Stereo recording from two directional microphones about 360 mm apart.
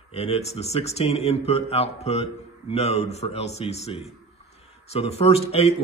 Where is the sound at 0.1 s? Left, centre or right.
Centre.